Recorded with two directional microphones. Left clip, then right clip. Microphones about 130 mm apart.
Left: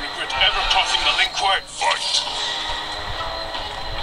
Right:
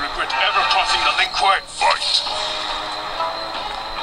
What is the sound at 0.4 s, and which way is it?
Music, 40° right (ahead or behind).